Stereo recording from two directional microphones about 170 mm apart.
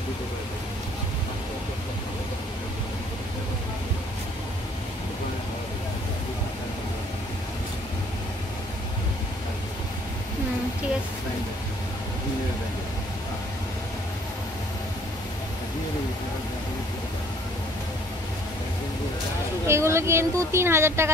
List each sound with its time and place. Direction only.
19.6 s speech: 15° right (ahead or behind)